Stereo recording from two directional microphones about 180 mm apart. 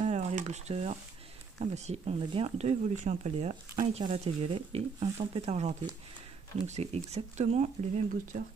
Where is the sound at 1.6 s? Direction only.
40° right (ahead or behind).